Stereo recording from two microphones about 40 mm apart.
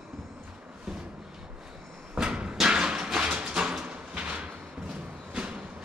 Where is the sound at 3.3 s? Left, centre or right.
Right.